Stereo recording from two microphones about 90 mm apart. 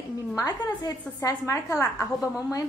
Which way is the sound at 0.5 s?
45° left (ahead or behind).